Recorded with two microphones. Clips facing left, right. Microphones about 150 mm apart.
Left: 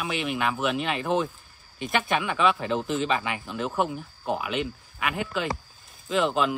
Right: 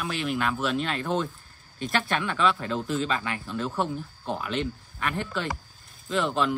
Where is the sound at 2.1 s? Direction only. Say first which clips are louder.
Left 2 dB; 10° left (ahead or behind).